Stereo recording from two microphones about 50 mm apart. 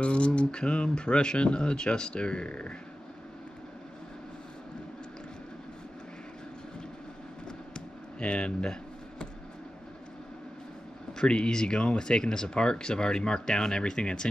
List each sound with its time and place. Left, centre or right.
0.0 s speech: left
7.4 s a sound: centre
11.1 s speech: centre